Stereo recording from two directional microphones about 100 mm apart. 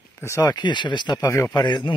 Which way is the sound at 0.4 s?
45° left (ahead or behind).